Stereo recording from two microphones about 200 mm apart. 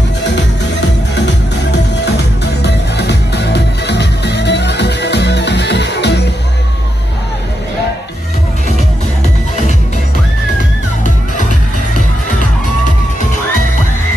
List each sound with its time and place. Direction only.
2.6 s music: 55° left (ahead or behind)